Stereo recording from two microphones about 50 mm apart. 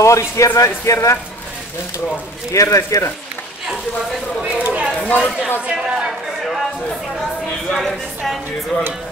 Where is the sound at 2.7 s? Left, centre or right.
Left.